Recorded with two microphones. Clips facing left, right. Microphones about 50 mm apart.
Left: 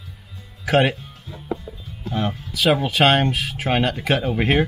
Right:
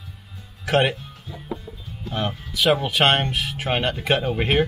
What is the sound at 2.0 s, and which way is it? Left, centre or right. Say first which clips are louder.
Speech: left 2 dB; centre.